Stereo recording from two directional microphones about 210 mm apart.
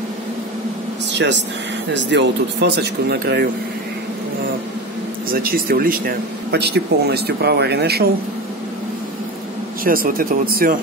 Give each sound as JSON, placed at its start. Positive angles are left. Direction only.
{"t": 1.1, "sound": "a man's voice", "side_deg": -55}
{"t": 5.3, "sound": "a man's voice", "side_deg": -45}
{"t": 9.8, "sound": "a man's voice", "side_deg": -45}